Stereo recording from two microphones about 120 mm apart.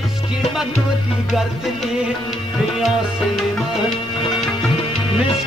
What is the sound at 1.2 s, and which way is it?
Music, centre (ahead or behind).